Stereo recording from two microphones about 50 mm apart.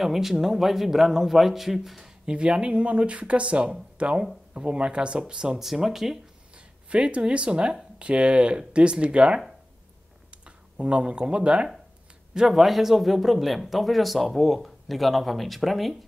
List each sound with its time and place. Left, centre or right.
0.0 s speech: centre
2.2 s speech: centre
5.6 s speech: centre
6.5 s speech: right
12.4 s speech: centre